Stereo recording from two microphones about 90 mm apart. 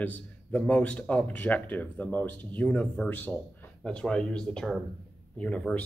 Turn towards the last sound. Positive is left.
turn(degrees=15)  # may be behind; listen again after turning